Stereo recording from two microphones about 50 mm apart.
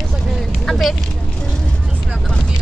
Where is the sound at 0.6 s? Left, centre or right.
Centre.